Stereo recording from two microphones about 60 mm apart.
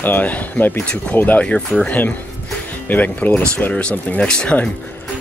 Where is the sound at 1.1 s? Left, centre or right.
Left.